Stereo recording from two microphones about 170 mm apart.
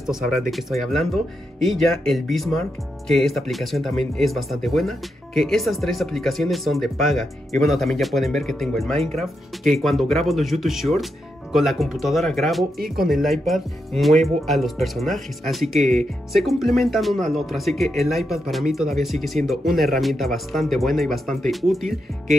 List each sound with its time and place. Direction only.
0.0 s speech: centre (ahead or behind)